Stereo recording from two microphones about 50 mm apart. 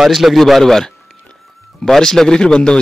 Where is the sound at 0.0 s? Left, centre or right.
Centre.